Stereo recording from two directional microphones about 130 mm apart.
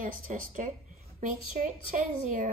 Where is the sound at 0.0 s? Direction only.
90° right.